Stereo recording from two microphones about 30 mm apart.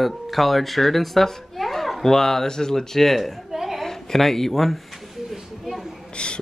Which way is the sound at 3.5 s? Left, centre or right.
Centre.